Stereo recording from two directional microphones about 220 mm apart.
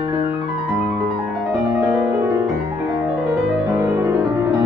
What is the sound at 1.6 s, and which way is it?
Music, 15° right (ahead or behind).